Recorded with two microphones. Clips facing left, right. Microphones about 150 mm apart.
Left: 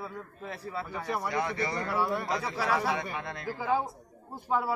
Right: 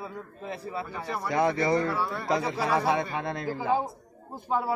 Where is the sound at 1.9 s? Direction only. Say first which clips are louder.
Left 1 dB; 15° left (ahead or behind).